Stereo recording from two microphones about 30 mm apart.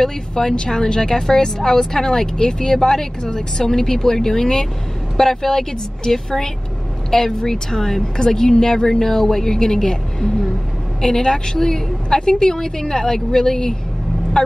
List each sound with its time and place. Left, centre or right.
0.0 s a woman's voice: centre